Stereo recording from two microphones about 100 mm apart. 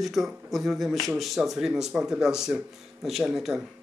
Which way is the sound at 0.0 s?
Centre (ahead or behind).